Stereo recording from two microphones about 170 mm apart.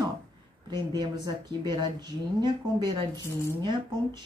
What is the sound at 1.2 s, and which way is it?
Speech, 25° right (ahead or behind).